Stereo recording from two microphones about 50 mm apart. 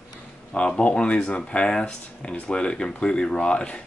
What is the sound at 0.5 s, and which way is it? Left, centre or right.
Speech, left.